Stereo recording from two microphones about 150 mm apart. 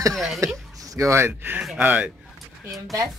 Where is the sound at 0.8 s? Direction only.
20° right (ahead or behind).